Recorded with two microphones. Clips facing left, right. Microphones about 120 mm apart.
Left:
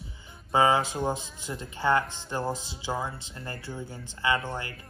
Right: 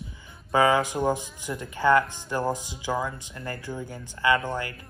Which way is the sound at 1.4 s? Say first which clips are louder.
Right 4 dB; 20° left (ahead or behind).